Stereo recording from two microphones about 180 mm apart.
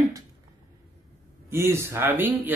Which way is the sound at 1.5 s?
15° right (ahead or behind).